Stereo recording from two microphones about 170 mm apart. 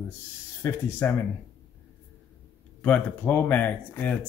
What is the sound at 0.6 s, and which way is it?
Speech, 15° left (ahead or behind).